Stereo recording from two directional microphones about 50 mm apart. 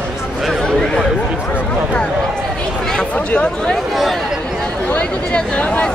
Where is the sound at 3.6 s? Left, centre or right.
Centre.